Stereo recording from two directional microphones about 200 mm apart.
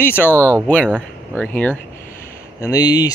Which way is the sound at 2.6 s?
20° left (ahead or behind).